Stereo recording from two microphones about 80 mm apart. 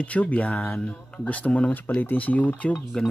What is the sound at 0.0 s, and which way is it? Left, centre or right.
Speech, centre.